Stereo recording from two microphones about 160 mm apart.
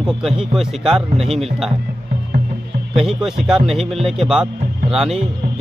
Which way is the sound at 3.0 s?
5° right (ahead or behind).